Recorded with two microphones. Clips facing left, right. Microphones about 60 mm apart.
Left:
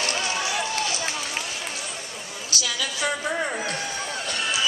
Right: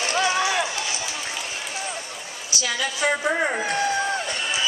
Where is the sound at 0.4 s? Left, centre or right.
Right.